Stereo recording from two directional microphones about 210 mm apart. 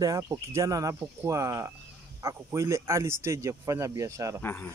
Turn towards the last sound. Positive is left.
turn(degrees=10)  # may be behind; listen again after turning